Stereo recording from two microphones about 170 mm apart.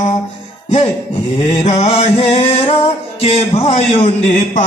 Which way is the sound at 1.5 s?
35° left (ahead or behind).